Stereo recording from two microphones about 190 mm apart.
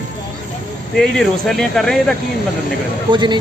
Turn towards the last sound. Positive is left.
turn(degrees=-25)  # may be behind; listen again after turning